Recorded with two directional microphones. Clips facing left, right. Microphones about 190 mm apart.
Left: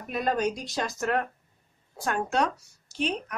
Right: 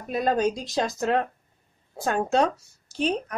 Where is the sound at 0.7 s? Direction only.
25° right (ahead or behind).